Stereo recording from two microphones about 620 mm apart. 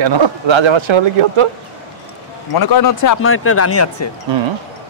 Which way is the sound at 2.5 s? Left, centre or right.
Left.